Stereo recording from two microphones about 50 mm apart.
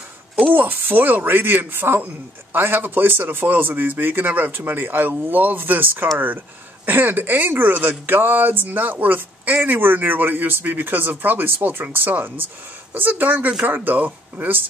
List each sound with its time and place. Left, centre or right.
0.4 s speech: right